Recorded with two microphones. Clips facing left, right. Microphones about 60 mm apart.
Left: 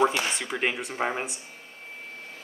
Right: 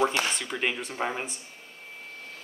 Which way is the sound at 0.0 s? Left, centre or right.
Centre.